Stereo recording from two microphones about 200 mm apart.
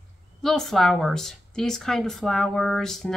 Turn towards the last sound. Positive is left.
turn(degrees=0)  # may be behind; listen again after turning